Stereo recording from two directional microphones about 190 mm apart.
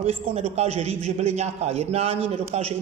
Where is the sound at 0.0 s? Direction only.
30° right (ahead or behind).